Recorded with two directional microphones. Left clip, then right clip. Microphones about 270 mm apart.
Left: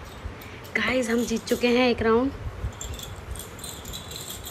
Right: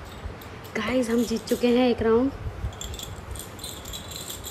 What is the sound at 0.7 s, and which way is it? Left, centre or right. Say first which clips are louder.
Speech: left 1 dB; centre.